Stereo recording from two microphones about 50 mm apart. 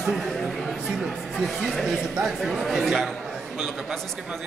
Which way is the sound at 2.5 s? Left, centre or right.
Centre.